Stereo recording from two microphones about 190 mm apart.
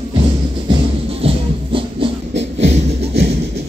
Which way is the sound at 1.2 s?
30° right (ahead or behind).